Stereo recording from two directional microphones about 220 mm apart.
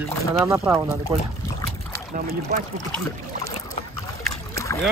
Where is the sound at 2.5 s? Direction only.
35° right (ahead or behind).